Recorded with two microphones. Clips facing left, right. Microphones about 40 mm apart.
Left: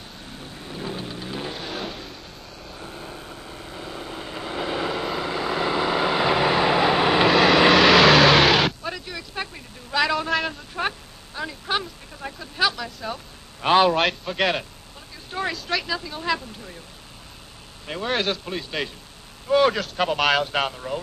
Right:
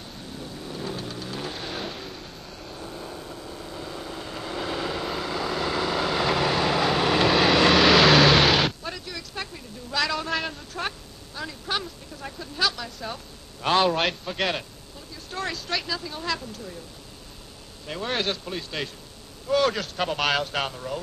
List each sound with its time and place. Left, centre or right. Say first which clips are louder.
0.3 s vehicle: right 1 dB; centre
1.5 s vehicle: left 2 dB; centre
2.8 s vehicle: even; centre
7.2 s vehicle: left 3 dB; centre
9.0 s vehicle: left 3 dB; centre
10.7 s a sound: left 4 dB; centre
12.7 s a sound: left 3 dB; centre
13.6 s a sound: left 4 dB; centre
13.8 s a man's voice: left 3 dB; centre
15.5 s vehicle: left 3 dB; centre
16.0 s speech: left 1 dB; centre
16.3 s speech: left 5 dB; centre
18.0 s a man's voice: left 3 dB; centre
20.5 s speech: left 4 dB; centre